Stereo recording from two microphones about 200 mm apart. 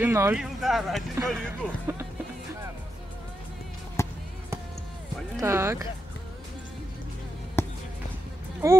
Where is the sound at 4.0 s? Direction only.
15° left (ahead or behind).